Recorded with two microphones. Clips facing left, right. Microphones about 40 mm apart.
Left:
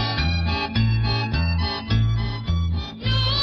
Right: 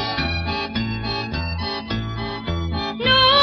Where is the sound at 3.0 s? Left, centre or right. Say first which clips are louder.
Right 11 dB; right.